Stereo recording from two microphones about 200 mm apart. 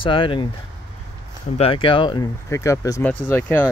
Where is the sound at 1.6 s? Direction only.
25° left (ahead or behind); by 3.6 s 10° left (ahead or behind).